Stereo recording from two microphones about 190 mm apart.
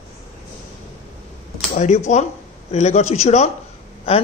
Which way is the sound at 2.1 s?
40° left (ahead or behind).